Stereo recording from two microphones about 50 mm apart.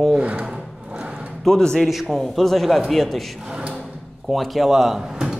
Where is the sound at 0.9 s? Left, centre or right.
Right.